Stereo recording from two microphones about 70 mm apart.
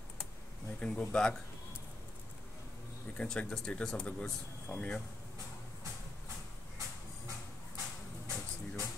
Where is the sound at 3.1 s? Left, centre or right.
Centre.